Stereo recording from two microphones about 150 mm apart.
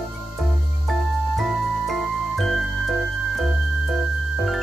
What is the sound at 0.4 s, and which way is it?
Music, centre (ahead or behind).